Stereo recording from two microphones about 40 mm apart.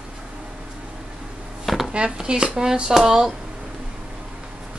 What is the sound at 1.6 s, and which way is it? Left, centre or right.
Chopping, centre.